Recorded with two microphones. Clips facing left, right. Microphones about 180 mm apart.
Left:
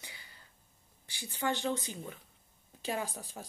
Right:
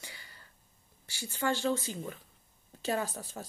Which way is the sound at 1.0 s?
20° left (ahead or behind).